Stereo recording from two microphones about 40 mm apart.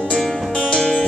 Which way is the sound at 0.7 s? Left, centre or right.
Centre.